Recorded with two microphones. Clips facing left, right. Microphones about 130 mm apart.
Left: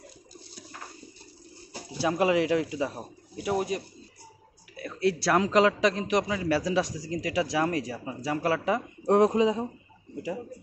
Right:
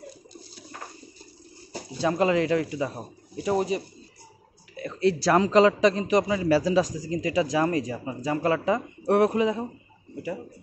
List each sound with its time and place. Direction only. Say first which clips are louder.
2.0 s a man's voice: right 1 dB; 10° left (ahead or behind)
9.0 s speech: even; 20° left (ahead or behind)